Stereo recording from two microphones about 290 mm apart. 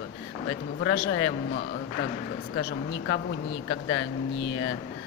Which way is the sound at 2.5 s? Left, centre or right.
Left.